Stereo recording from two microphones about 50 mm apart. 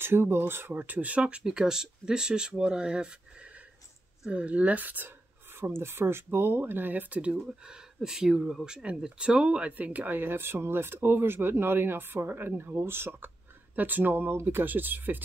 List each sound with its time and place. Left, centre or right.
0.0 s speech: right
1.4 s speech: centre; by 5.1 s right
5.5 s speech: right
7.3 s speech: centre
9.0 s speech: centre; by 13.3 s right
13.7 s speech: right
14.3 s speech: right